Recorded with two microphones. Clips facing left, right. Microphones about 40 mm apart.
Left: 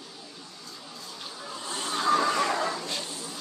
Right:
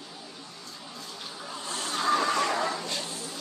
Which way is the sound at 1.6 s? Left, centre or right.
Centre.